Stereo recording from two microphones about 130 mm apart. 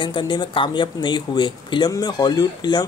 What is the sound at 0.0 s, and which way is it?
Speech, 40° left (ahead or behind).